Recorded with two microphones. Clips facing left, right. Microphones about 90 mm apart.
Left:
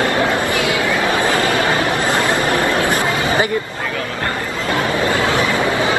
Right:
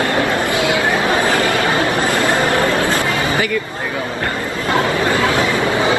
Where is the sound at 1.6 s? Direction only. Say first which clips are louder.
Right 1 dB; 25° right (ahead or behind).